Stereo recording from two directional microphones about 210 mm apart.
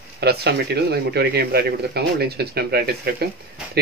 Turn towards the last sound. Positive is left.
turn(degrees=-50)  # may be behind; listen again after turning